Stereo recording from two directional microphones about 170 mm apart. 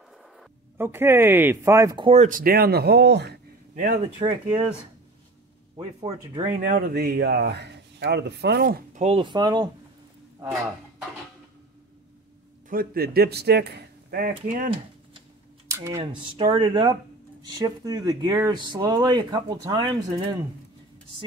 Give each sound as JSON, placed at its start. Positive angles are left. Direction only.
{"t": 0.7, "sound": "speech", "side_deg": -15}
{"t": 2.0, "sound": "speech", "side_deg": -45}
{"t": 3.7, "sound": "speech", "side_deg": -45}
{"t": 5.8, "sound": "speech", "side_deg": -20}
{"t": 6.7, "sound": "speech", "side_deg": -65}
{"t": 9.0, "sound": "speech", "side_deg": -30}
{"t": 12.6, "sound": "speech", "side_deg": -60}
{"t": 15.7, "sound": "speech", "side_deg": -15}
{"t": 16.0, "sound": "speech", "side_deg": -30}